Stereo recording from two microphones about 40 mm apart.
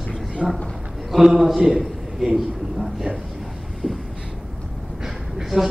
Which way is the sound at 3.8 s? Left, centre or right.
Left.